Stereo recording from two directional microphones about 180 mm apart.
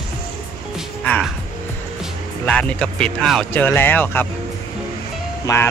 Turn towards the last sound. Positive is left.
turn(degrees=20)  # may be behind; listen again after turning